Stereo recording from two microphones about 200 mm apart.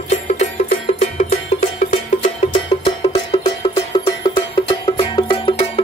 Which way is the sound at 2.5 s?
25° left (ahead or behind).